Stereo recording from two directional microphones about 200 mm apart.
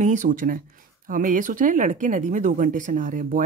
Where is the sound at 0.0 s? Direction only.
40° right (ahead or behind).